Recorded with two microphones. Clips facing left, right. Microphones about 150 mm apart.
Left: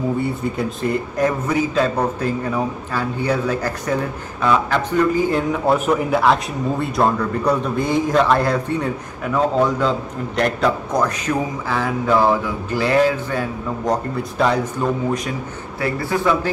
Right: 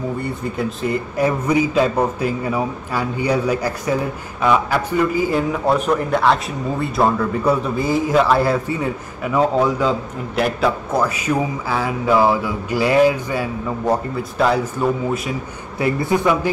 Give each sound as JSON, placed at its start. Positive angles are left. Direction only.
{"t": 0.2, "sound": "a man's voice", "side_deg": 0}
{"t": 15.8, "sound": "a man's voice", "side_deg": -20}